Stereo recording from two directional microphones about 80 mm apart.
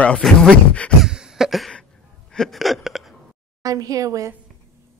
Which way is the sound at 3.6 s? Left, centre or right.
Right.